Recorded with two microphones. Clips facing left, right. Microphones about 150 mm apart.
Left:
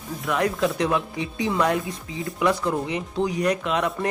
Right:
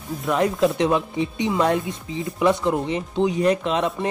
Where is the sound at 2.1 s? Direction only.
25° right (ahead or behind).